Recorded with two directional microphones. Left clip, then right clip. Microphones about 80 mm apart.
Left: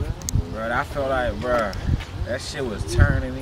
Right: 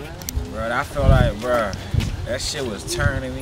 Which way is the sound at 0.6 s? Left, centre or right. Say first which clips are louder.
Right 2 dB; centre.